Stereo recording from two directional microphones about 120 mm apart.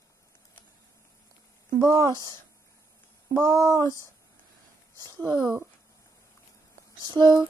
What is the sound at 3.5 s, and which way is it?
Child singing, 25° left (ahead or behind).